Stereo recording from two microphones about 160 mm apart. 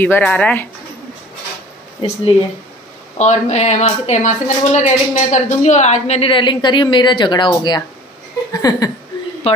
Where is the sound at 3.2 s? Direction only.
45° left (ahead or behind); by 8.8 s 25° left (ahead or behind).